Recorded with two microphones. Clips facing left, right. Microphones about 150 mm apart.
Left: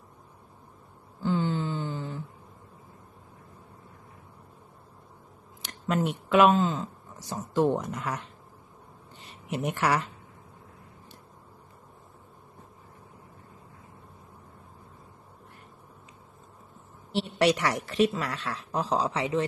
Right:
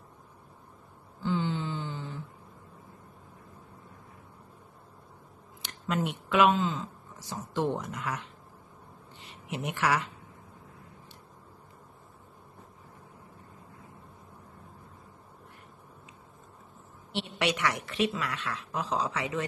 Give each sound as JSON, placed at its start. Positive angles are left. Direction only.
{"t": 1.2, "sound": "a sound", "side_deg": 40}
{"t": 5.6, "sound": "speech", "side_deg": 40}
{"t": 9.5, "sound": "a woman's voice", "side_deg": 40}
{"t": 17.1, "sound": "a woman's voice", "side_deg": 35}